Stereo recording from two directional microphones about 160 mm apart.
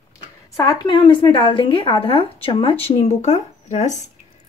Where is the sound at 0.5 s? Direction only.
25° left (ahead or behind); by 4.0 s 45° left (ahead or behind).